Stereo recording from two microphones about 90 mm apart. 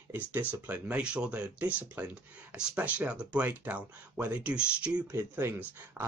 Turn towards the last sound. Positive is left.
turn(degrees=-25)  # may be behind; listen again after turning